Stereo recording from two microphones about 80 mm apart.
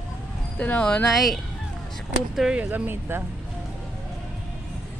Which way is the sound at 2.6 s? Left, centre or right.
Right.